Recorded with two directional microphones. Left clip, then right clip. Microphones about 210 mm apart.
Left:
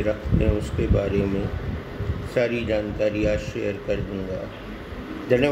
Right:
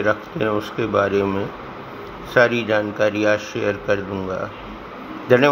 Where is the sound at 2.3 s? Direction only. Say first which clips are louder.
Right 7 dB; 15° right (ahead or behind).